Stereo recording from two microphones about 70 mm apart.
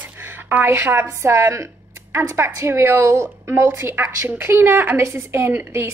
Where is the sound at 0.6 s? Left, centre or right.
Right.